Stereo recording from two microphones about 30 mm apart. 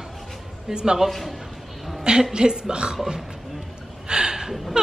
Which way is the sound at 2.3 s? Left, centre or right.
Right.